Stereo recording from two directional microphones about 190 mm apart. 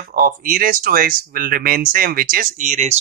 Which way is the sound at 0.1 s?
45° right (ahead or behind).